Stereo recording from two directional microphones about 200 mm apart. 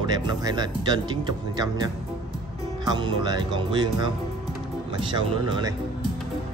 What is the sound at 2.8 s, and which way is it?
Speech, 20° right (ahead or behind).